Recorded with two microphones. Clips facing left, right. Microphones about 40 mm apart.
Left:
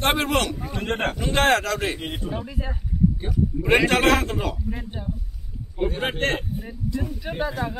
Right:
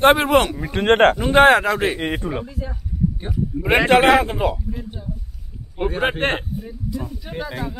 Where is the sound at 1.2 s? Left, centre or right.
Centre.